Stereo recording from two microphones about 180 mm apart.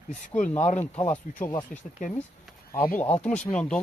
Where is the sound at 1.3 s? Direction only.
45° left (ahead or behind).